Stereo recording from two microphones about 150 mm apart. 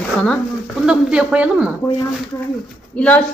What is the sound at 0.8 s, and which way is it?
Speech, 10° right (ahead or behind).